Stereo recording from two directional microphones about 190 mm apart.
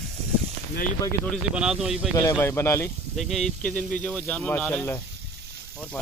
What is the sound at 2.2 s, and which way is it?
Speech, 15° left (ahead or behind).